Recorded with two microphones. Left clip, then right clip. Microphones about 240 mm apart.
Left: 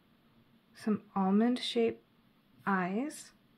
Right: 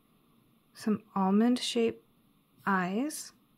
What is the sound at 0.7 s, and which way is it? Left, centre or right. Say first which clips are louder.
Speech: right 2 dB; centre.